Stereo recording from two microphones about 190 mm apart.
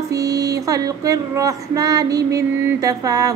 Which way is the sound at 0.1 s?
20° right (ahead or behind).